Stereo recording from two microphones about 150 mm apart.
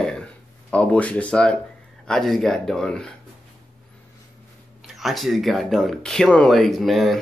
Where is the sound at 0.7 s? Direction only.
10° left (ahead or behind).